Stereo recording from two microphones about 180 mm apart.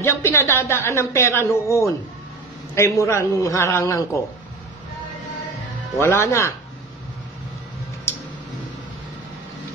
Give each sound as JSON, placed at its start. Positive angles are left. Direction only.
{"t": 0.0, "sound": "a man's voice", "side_deg": 15}
{"t": 5.9, "sound": "a man's voice", "side_deg": 15}